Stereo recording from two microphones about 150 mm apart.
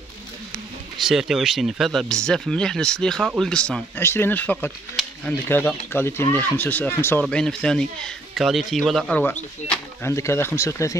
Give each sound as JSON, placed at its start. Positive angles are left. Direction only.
{"t": 1.0, "sound": "speech", "side_deg": 0}
{"t": 4.0, "sound": "speech", "side_deg": 15}
{"t": 9.2, "sound": "speech", "side_deg": 10}